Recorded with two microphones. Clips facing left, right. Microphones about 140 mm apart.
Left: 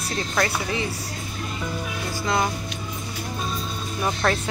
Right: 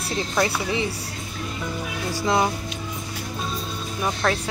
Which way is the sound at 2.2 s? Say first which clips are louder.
Right 3 dB; 10° right (ahead or behind).